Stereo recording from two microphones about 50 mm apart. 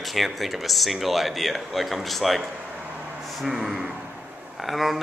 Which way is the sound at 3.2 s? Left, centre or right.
Centre.